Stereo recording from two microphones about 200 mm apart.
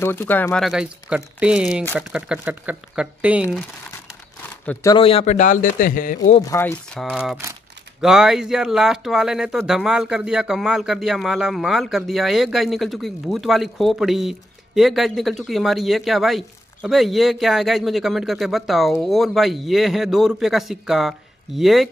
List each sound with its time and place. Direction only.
0.0 s speech: 10° left (ahead or behind); by 3.4 s 5° right (ahead or behind)
3.4 s speech: 10° left (ahead or behind)
4.9 s a man's voice: 30° left (ahead or behind)
6.4 s speech: 10° left (ahead or behind)